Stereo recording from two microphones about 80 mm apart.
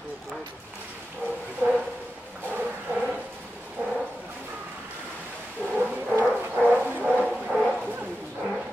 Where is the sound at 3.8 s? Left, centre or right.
Right.